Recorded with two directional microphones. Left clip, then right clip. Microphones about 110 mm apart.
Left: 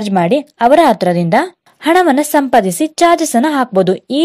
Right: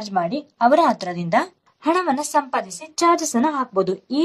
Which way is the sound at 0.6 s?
45° left (ahead or behind).